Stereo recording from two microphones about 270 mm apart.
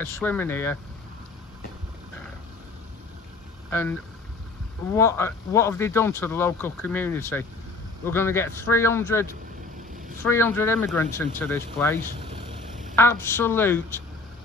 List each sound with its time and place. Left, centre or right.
0.0 s speech: centre
4.9 s speech: centre
12.0 s vehicle: right
12.9 s speech: centre